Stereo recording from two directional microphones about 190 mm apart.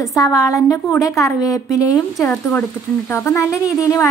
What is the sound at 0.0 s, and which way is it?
Speech, 15° left (ahead or behind).